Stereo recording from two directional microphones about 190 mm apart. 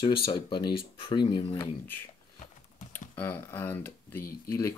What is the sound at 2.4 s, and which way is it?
Typing, 35° left (ahead or behind).